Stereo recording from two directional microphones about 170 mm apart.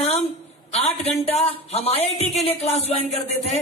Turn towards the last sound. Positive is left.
turn(degrees=40)  # may be behind; listen again after turning